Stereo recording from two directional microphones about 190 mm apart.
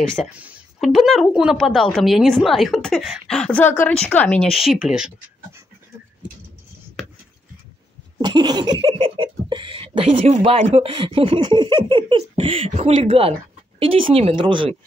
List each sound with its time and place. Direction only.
0.1 s speech: centre (ahead or behind)
8.2 s speech: 20° right (ahead or behind)